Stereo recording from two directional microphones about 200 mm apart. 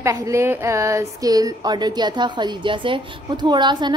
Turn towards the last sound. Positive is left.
turn(degrees=-20)  # may be behind; listen again after turning